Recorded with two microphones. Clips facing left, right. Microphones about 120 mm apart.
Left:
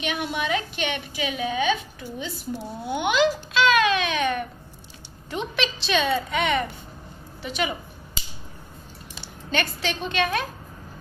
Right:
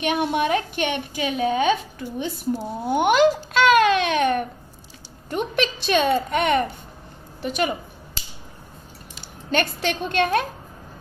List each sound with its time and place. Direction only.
0.0 s a woman's voice: 50° right (ahead or behind)
9.5 s a woman's voice: 50° right (ahead or behind)